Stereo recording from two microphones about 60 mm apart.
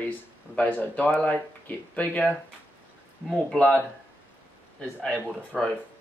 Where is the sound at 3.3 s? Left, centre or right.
Centre.